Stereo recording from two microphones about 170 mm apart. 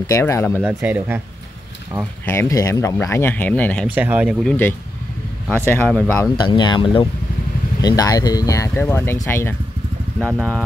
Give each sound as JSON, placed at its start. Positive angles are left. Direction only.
{"t": 0.0, "sound": "speech", "side_deg": 15}
{"t": 0.7, "sound": "speech", "side_deg": -10}
{"t": 2.2, "sound": "speech", "side_deg": 15}
{"t": 3.8, "sound": "speech", "side_deg": -10}
{"t": 4.5, "sound": "speech", "side_deg": 10}
{"t": 6.3, "sound": "speech", "side_deg": 25}